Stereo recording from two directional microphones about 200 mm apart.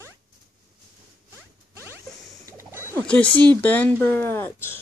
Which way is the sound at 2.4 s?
15° right (ahead or behind).